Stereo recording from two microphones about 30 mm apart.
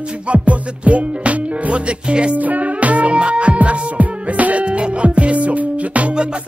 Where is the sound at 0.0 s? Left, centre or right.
Right.